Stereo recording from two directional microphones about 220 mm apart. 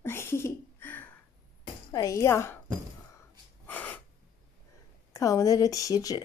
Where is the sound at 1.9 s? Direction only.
15° left (ahead or behind).